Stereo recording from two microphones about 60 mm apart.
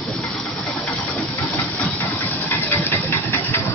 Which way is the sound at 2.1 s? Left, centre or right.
Left.